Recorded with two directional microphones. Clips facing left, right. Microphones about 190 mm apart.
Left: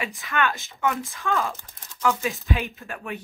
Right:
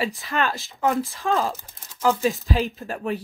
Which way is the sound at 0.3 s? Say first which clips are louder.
Right 1 dB; 35° right (ahead or behind).